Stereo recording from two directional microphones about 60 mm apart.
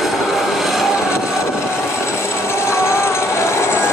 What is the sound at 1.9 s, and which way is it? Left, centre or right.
Jackhammer, left.